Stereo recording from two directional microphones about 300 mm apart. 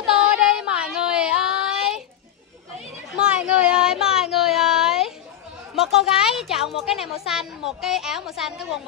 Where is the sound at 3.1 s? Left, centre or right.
Centre.